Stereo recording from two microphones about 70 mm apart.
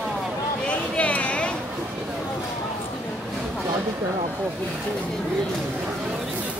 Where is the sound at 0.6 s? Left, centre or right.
Centre.